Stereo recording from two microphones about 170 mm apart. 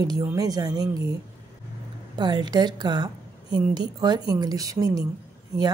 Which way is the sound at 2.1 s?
25° right (ahead or behind).